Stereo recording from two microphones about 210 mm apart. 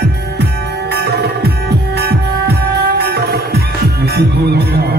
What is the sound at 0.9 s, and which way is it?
Music, 50° right (ahead or behind).